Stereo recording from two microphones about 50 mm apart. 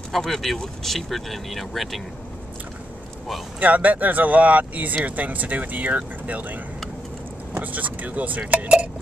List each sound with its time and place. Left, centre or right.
0.1 s speech: centre
3.5 s speech: right